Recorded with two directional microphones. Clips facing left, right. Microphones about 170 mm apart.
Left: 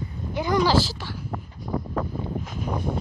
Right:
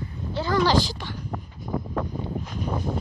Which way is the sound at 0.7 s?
5° left (ahead or behind).